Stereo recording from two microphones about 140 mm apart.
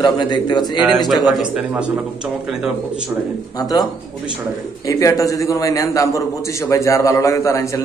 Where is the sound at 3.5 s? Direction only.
25° left (ahead or behind).